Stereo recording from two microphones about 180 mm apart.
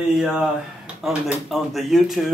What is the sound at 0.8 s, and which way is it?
Speech, centre (ahead or behind).